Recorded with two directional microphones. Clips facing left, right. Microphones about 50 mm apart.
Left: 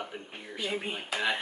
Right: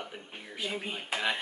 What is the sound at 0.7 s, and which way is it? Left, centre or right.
Speech, centre.